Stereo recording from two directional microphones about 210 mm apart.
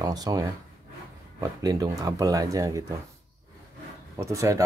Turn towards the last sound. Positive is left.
turn(degrees=-15)  # may be behind; listen again after turning